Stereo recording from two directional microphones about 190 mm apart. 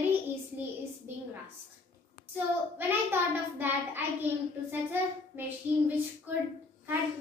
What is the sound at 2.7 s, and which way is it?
A child's voice, 10° right (ahead or behind).